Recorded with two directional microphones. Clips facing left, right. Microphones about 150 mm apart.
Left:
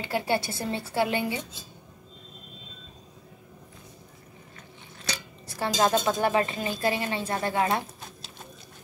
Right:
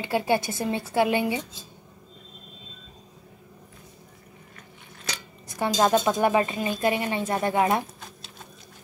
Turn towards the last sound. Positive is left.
turn(degrees=-20)  # may be behind; listen again after turning